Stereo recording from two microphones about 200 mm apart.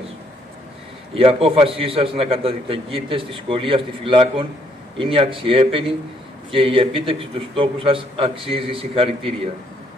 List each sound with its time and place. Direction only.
1.1 s a man's voice: 30° right (ahead or behind)